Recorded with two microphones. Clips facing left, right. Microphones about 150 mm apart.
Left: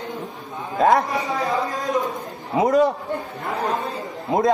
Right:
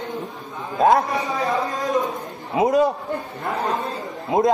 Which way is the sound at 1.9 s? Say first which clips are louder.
Right 1 dB; centre (ahead or behind).